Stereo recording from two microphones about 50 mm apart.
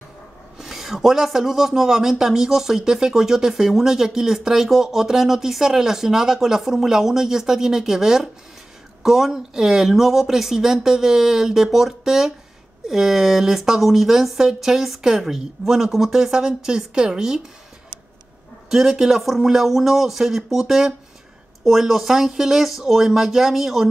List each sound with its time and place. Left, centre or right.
0.6 s speech: centre
18.7 s speech: centre